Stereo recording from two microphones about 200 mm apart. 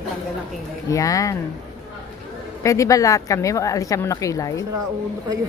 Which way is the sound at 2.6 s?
15° left (ahead or behind).